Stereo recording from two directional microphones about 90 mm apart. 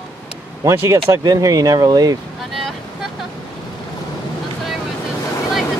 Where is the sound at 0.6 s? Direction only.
35° right (ahead or behind).